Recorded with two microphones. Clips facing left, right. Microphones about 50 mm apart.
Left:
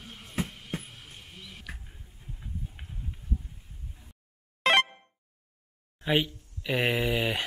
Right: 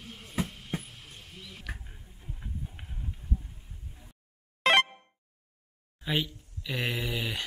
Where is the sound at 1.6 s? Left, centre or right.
Centre.